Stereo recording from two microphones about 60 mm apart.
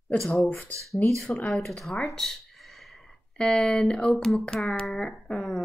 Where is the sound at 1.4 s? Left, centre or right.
Centre.